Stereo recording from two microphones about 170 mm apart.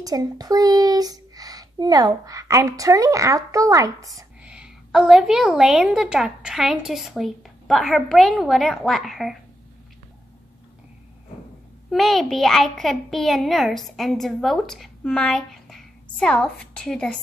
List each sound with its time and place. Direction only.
0.0 s a child's voice: 20° right (ahead or behind)
4.4 s a child's voice: 5° right (ahead or behind)
11.9 s a child's voice: centre (ahead or behind)